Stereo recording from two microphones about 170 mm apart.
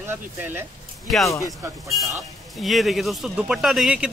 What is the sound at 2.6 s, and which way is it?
Speech, centre (ahead or behind).